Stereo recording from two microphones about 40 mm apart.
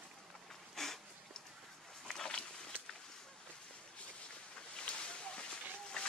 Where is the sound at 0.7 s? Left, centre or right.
Centre.